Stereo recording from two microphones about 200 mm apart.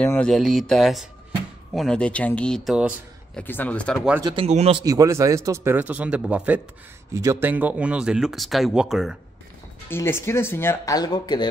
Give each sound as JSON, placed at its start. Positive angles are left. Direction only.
{"t": 0.0, "sound": "speech", "side_deg": 5}
{"t": 3.3, "sound": "speech", "side_deg": 10}
{"t": 4.2, "sound": "speech", "side_deg": -25}
{"t": 4.8, "sound": "a man's voice", "side_deg": -15}
{"t": 9.8, "sound": "speech", "side_deg": 10}